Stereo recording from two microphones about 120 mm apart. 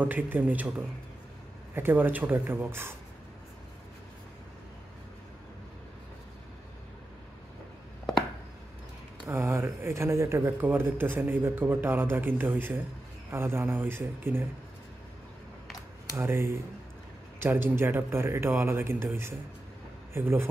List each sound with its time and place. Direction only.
0.0 s speech: 15° right (ahead or behind)
9.3 s speech: 20° right (ahead or behind)
16.2 s speech: 20° right (ahead or behind)